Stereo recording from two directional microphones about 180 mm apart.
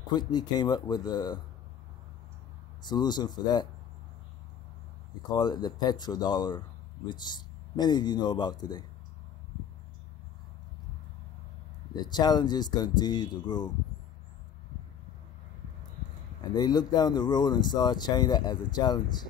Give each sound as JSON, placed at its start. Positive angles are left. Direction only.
{"t": 0.1, "sound": "speech", "side_deg": 25}
{"t": 2.8, "sound": "speech", "side_deg": 25}
{"t": 5.3, "sound": "speech", "side_deg": 25}
{"t": 11.9, "sound": "speech", "side_deg": 25}
{"t": 16.3, "sound": "speech", "side_deg": 25}